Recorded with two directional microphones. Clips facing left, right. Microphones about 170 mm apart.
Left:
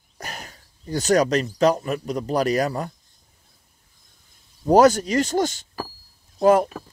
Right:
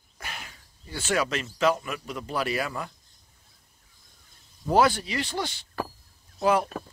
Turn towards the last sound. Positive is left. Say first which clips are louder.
# left 7 dB
turn(degrees=45)  # may be behind; listen again after turning